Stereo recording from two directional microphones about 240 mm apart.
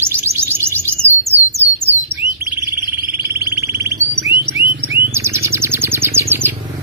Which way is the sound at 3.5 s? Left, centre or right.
Centre.